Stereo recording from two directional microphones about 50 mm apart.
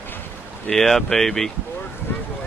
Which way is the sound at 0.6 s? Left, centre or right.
Centre.